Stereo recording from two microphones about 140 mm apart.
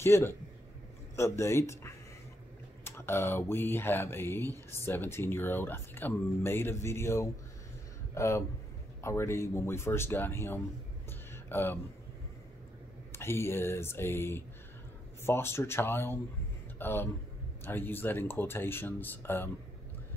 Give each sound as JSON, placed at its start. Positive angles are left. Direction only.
{"t": 0.0, "sound": "speech", "side_deg": 15}
{"t": 13.1, "sound": "a man's voice", "side_deg": 20}